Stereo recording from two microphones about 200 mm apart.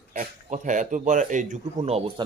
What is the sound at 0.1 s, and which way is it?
Speech, 40° right (ahead or behind).